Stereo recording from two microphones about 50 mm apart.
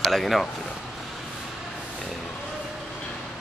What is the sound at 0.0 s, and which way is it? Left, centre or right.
Speech, centre.